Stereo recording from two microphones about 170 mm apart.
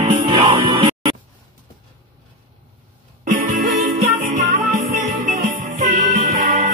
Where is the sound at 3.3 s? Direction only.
50° right (ahead or behind).